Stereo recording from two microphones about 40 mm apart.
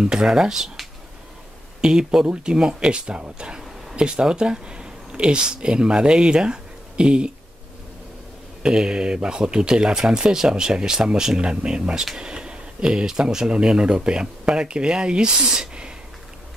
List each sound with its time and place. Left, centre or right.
0.0 s speech: centre
1.8 s speech: centre
8.6 s speech: right